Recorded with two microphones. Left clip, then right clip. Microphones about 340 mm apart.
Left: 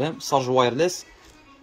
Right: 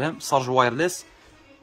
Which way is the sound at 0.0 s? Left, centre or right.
Centre.